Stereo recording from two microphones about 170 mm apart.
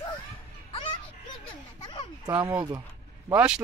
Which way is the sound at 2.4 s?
15° right (ahead or behind).